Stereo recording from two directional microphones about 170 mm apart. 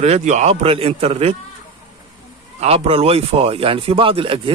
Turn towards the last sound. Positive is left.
turn(degrees=-30)  # may be behind; listen again after turning